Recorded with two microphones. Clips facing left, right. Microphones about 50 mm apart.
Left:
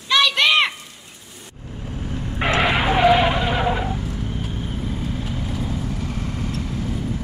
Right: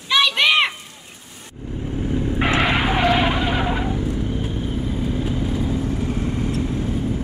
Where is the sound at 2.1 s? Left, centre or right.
Centre.